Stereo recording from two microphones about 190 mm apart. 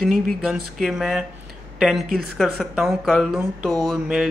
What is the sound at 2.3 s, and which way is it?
Mantra, centre (ahead or behind).